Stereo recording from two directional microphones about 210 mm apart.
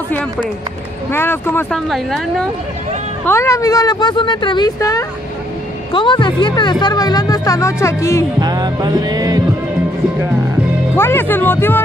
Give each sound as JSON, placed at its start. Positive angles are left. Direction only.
{"t": 1.1, "sound": "speech", "side_deg": 10}
{"t": 3.3, "sound": "speech", "side_deg": 15}
{"t": 8.4, "sound": "music", "side_deg": -20}
{"t": 11.0, "sound": "speech", "side_deg": 10}